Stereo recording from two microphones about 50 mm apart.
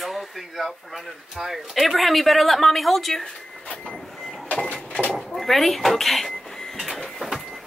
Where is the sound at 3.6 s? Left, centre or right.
Left.